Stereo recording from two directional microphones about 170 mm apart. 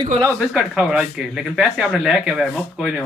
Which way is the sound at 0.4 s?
5° right (ahead or behind).